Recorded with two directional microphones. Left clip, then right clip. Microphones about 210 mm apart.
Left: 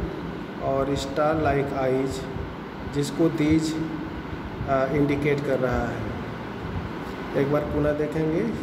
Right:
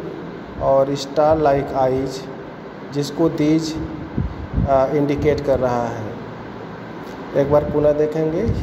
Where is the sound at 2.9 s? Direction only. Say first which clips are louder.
Right 4 dB; 15° right (ahead or behind).